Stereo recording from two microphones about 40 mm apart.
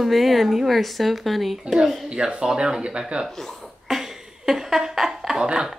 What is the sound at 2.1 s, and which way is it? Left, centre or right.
Speech, right.